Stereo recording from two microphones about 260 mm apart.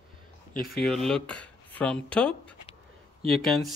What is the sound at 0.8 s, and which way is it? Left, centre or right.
Speech, centre.